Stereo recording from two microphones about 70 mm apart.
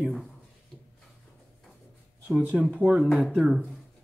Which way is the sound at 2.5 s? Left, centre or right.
Right.